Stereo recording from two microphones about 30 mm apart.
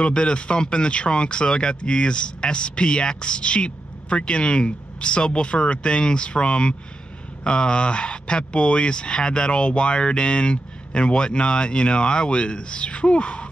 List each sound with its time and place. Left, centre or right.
0.0 s speech: left